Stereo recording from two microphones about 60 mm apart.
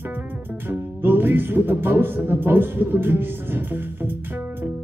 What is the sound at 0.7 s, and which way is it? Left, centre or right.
Speech, right.